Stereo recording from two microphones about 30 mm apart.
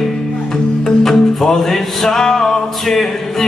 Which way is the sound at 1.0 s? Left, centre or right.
Centre.